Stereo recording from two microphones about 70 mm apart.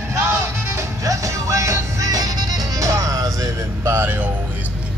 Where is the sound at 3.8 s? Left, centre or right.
Right.